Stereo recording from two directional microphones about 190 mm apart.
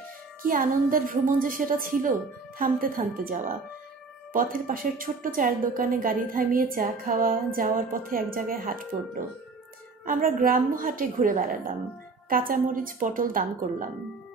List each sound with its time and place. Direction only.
0.5 s a woman's voice: 45° right (ahead or behind)
10.0 s a woman's voice: 45° right (ahead or behind)